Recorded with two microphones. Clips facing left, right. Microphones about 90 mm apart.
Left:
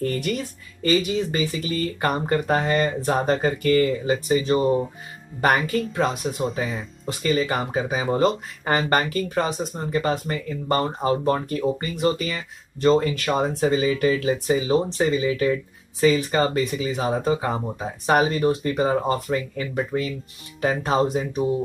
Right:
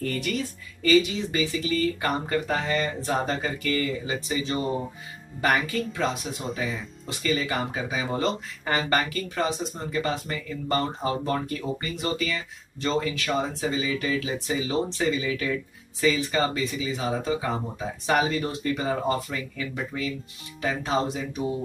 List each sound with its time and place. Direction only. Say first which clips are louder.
0.8 s speech: even; 45° left (ahead or behind); by 15.6 s 30° left (ahead or behind)
16.0 s speech: left 5 dB; 50° left (ahead or behind)